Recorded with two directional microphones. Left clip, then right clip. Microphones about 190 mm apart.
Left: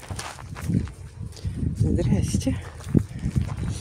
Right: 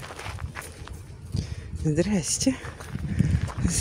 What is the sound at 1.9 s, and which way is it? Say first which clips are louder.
Speech: right 3 dB; 15° right (ahead or behind).